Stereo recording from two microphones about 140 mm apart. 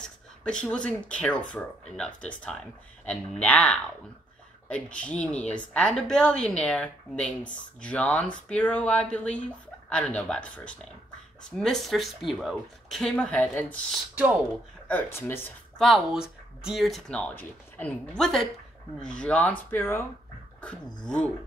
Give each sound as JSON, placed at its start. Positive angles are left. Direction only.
{"t": 0.0, "sound": "speech", "side_deg": 5}
{"t": 14.9, "sound": "speech", "side_deg": 15}
{"t": 15.8, "sound": "speech", "side_deg": 0}
{"t": 20.6, "sound": "speech", "side_deg": 5}